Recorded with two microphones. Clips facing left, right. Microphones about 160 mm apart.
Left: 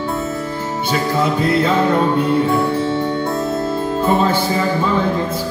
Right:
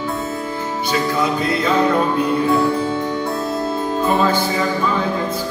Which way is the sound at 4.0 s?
25° left (ahead or behind).